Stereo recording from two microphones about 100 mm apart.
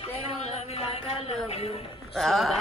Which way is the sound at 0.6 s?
85° left.